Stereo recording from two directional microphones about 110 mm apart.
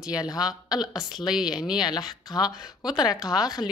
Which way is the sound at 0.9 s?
5° right (ahead or behind).